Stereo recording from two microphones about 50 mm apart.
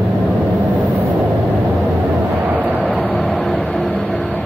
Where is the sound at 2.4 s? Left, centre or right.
Right.